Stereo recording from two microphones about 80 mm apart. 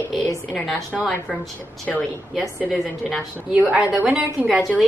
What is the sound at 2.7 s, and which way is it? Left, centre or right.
Speech, centre.